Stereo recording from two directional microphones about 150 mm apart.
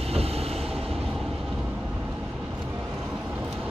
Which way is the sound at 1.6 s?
10° right (ahead or behind).